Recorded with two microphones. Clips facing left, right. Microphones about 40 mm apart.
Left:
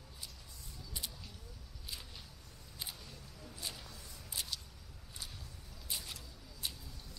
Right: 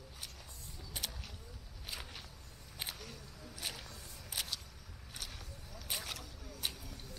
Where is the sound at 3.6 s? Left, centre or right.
Right.